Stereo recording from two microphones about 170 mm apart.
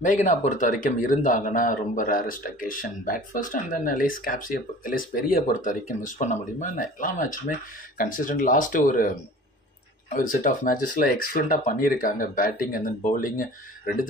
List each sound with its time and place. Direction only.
0.0 s a man's voice: 45° left (ahead or behind)
10.1 s a man's voice: 55° left (ahead or behind)